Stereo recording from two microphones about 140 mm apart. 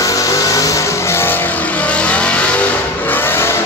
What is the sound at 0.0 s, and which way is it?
Vehicle, 25° left (ahead or behind).